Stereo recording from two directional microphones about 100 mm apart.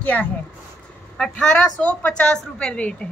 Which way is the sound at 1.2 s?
5° left (ahead or behind).